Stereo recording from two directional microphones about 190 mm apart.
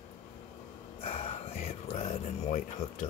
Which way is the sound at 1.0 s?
35° left (ahead or behind).